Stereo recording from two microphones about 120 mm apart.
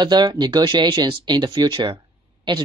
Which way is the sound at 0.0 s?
40° right (ahead or behind).